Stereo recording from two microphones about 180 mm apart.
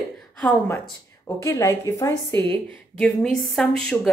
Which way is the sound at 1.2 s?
15° left (ahead or behind).